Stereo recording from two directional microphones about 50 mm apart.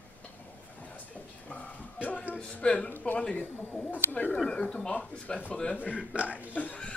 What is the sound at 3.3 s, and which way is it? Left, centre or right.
Speech, left.